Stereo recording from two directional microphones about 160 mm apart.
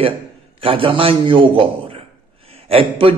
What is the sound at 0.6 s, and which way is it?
A man's voice, 35° right (ahead or behind).